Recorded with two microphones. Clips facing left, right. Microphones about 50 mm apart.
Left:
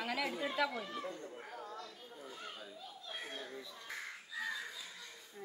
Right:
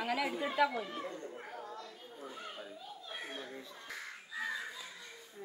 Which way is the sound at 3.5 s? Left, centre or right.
Right.